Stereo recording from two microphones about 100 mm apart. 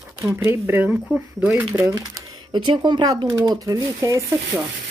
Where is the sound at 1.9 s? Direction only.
40° right (ahead or behind).